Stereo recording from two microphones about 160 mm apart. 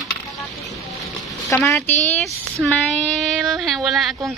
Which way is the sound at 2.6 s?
Centre (ahead or behind).